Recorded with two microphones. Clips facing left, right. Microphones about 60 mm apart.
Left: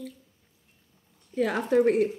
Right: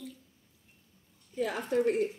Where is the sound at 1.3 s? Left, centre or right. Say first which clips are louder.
Left 7 dB; left.